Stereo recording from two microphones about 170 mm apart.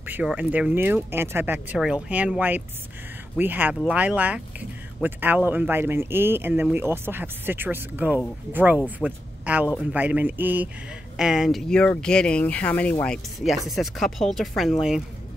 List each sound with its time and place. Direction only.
0.0 s speech: 10° right (ahead or behind)